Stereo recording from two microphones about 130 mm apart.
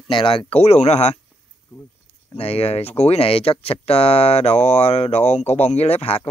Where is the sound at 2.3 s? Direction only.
50° left (ahead or behind).